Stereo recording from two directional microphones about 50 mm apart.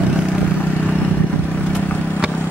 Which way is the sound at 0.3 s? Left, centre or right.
Left.